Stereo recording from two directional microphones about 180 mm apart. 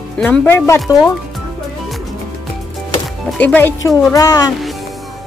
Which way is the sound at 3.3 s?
10° left (ahead or behind).